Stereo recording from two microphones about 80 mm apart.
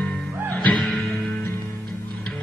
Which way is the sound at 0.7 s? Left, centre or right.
Centre.